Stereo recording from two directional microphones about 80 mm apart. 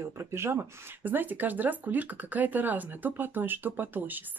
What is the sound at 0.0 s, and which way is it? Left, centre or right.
Speech, right.